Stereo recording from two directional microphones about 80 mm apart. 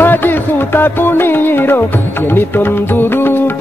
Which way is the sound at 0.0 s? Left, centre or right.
Left.